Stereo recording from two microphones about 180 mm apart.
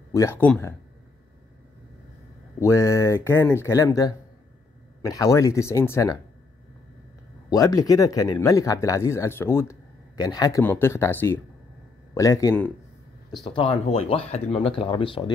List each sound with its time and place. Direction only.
0.1 s speech: 15° left (ahead or behind)
2.6 s speech: 15° left (ahead or behind)
7.4 s speech: 20° left (ahead or behind)